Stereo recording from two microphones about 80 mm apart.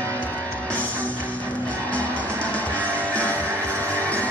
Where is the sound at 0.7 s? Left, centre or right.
Centre.